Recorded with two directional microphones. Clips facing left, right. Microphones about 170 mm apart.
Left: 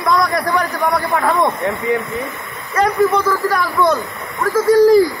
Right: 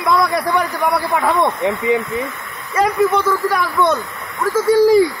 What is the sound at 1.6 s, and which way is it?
Speech, 15° right (ahead or behind).